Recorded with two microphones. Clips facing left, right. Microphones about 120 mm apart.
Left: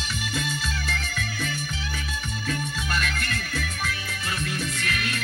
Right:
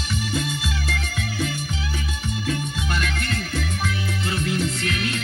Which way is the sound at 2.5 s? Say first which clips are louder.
Right 1 dB; 25° right (ahead or behind).